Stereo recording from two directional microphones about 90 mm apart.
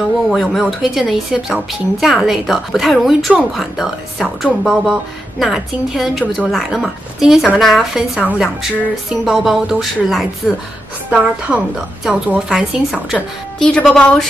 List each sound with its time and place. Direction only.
0.3 s a woman's voice: 5° left (ahead or behind)
9.2 s a woman's voice: 5° right (ahead or behind)
11.1 s a woman's voice: 15° right (ahead or behind)
13.6 s a woman's voice: 10° left (ahead or behind)